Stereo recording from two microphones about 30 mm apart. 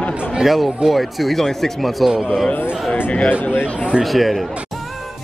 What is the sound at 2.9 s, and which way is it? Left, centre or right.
Speech, left.